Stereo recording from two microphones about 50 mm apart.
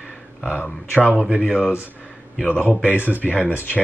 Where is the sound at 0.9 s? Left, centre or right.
Right.